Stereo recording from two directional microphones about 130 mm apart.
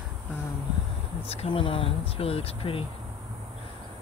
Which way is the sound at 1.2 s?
50° left (ahead or behind).